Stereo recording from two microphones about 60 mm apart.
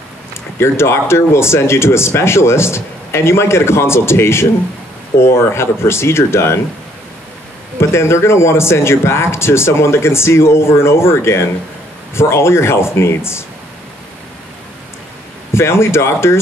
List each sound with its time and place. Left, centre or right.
0.6 s speech: left
7.9 s speech: left
15.5 s speech: left